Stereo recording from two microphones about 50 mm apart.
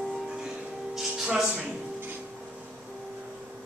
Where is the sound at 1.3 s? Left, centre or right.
Right.